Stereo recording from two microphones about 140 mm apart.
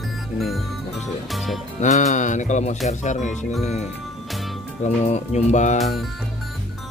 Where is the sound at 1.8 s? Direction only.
60° left (ahead or behind).